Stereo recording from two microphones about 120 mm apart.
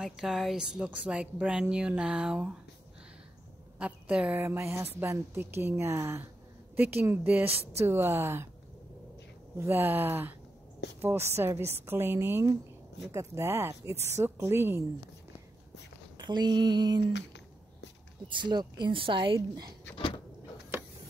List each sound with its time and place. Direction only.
0.0 s speech: 5° right (ahead or behind)
3.7 s a woman's voice: 10° right (ahead or behind)
9.6 s a woman's voice: 20° right (ahead or behind)
16.2 s a woman's voice: 40° right (ahead or behind)
18.3 s a woman's voice: 40° right (ahead or behind)